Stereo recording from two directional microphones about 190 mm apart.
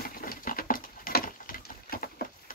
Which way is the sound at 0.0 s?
50° left (ahead or behind).